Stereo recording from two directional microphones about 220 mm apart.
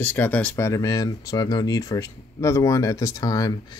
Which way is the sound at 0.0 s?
10° left (ahead or behind).